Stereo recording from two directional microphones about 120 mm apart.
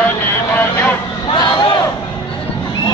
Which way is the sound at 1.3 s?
40° left (ahead or behind).